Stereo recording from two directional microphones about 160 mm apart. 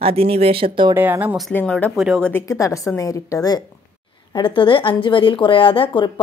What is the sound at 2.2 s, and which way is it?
A woman's voice, 15° left (ahead or behind).